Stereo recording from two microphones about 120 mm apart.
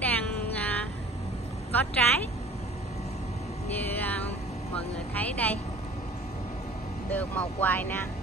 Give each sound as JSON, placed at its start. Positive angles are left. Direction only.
{"t": 0.0, "sound": "music", "side_deg": 15}
{"t": 1.7, "sound": "a woman's voice", "side_deg": 15}
{"t": 3.8, "sound": "music", "side_deg": 15}
{"t": 4.7, "sound": "speech", "side_deg": 15}
{"t": 7.1, "sound": "speech", "side_deg": 15}